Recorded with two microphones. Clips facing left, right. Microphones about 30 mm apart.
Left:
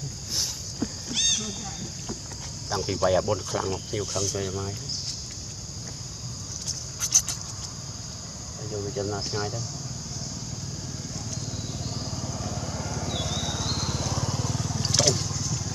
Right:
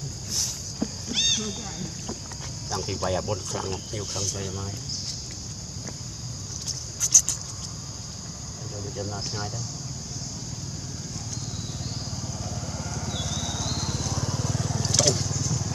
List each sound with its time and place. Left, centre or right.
1.1 s a sound: centre
2.8 s cricket: centre
4.0 s speech: centre
4.3 s cricket: centre
7.0 s a sound: left
8.7 s cricket: centre
11.1 s vehicle: centre